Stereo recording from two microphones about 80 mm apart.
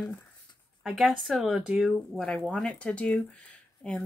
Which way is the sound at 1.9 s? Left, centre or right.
Centre.